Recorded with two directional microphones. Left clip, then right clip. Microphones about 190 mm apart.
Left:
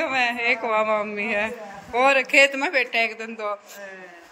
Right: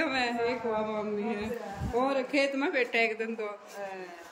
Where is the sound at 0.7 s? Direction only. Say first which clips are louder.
Left 10 dB; 35° left (ahead or behind).